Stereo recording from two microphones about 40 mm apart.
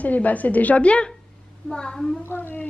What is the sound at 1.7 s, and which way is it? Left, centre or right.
Speech, centre.